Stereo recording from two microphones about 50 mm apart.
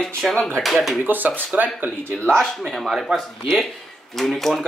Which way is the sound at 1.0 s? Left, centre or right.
Right.